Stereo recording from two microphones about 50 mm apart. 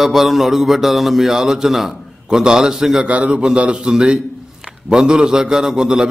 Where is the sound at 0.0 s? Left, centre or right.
Centre.